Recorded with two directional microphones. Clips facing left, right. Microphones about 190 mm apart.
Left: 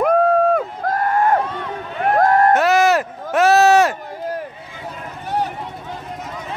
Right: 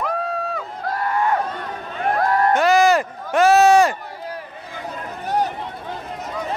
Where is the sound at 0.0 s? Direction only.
55° left (ahead or behind).